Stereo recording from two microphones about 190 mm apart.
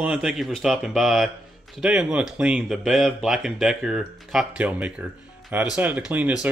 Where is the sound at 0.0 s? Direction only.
5° right (ahead or behind).